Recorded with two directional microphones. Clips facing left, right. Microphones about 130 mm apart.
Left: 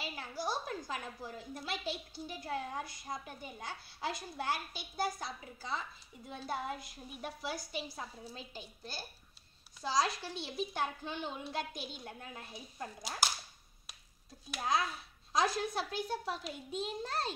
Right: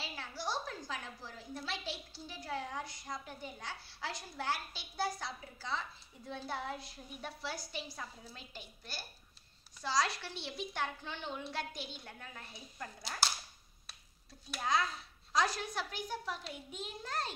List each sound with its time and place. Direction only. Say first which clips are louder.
0.0 s a sound: left 2 dB; 15° left (ahead or behind)
2.2 s a child's voice: left 1 dB; 20° left (ahead or behind)
8.2 s a woman's voice: left 4 dB; 30° left (ahead or behind)
10.3 s a woman's voice: left 3 dB; 15° left (ahead or behind)
11.7 s a woman's voice: left 1 dB; 25° right (ahead or behind)
12.0 s a child's voice: left 3 dB; 20° left (ahead or behind)
14.5 s a woman's voice: even; 15° left (ahead or behind)